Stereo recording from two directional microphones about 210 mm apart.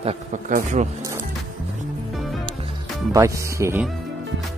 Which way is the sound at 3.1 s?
15° right (ahead or behind).